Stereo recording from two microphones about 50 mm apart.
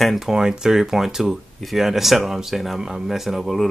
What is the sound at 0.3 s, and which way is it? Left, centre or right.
Speech, centre.